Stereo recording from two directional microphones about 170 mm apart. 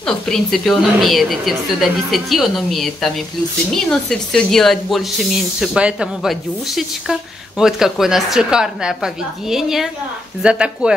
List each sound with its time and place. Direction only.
0.0 s speech: centre (ahead or behind)